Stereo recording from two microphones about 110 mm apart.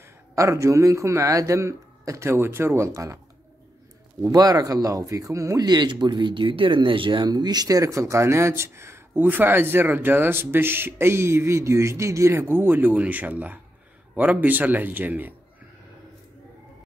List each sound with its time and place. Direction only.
0.4 s speech: 25° right (ahead or behind)
4.2 s a man's voice: 35° right (ahead or behind); by 15.3 s 15° right (ahead or behind)